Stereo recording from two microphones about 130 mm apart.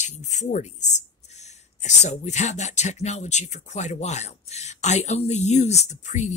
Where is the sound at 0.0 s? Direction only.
65° left (ahead or behind).